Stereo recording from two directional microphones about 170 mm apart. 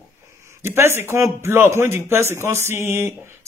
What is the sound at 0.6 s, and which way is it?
Speech, 15° right (ahead or behind).